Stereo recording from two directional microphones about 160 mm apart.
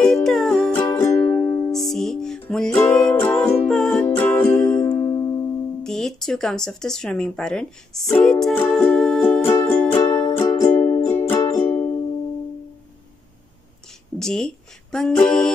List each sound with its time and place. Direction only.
0.0 s music: centre (ahead or behind)
0.7 s music: 15° left (ahead or behind)
1.7 s music: centre (ahead or behind)
3.2 s music: 15° left (ahead or behind)
5.9 s speech: 5° left (ahead or behind)
8.7 s music: 5° left (ahead or behind)
10.5 s music: 15° left (ahead or behind)
14.1 s speech: 5° left (ahead or behind)